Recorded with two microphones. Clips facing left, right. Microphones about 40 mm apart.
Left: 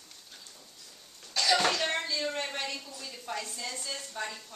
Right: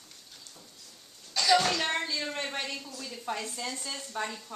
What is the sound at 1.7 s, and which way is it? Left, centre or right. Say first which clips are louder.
A child's voice: right 1 dB; centre.